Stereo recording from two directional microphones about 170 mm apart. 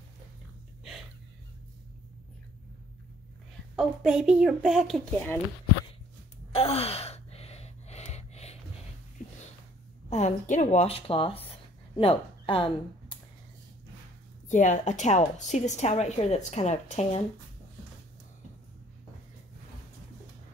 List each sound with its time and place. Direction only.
3.7 s speech: centre (ahead or behind)
6.5 s gasp: 35° left (ahead or behind)
9.2 s wheeze: 45° left (ahead or behind)
10.0 s speech: 40° left (ahead or behind)
14.5 s a woman's voice: 45° left (ahead or behind)